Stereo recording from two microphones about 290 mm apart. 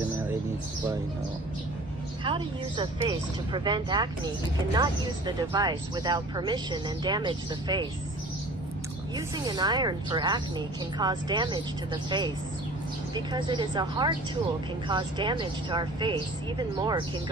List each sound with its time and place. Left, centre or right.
2.2 s speech: centre
9.1 s speech: centre